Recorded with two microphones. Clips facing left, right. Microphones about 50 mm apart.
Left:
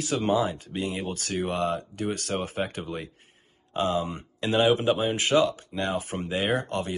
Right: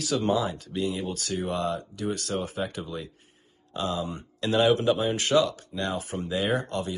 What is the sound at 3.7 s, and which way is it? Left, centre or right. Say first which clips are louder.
Speech: left 3 dB; left.